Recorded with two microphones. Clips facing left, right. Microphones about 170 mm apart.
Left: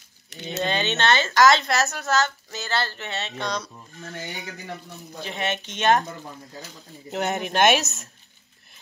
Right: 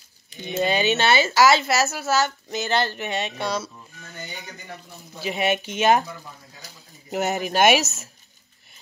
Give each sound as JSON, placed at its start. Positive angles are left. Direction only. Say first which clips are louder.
{"t": 0.5, "sound": "speech", "louder": "right 4 dB", "side_deg": -10}
{"t": 4.0, "sound": "speech", "louder": "left 4 dB", "side_deg": 65}
{"t": 5.2, "sound": "speech", "louder": "right 5 dB", "side_deg": -10}
{"t": 7.1, "sound": "speech", "louder": "right 2 dB", "side_deg": 0}